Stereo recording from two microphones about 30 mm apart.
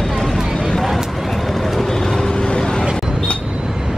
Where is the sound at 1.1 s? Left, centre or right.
Centre.